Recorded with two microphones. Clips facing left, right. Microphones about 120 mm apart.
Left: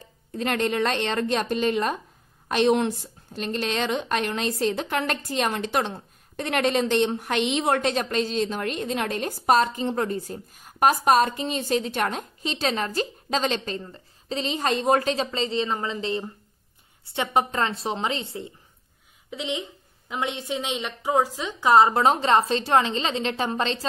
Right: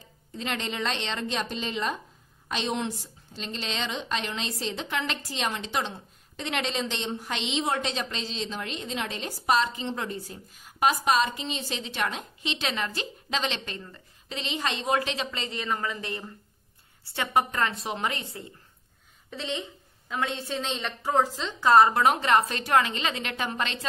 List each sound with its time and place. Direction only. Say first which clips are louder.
0.3 s a woman's voice: left 8 dB; 50° left (ahead or behind); by 18.5 s 25° left (ahead or behind)
19.3 s a woman's voice: left 3 dB; 15° left (ahead or behind); by 23.9 s 30° left (ahead or behind)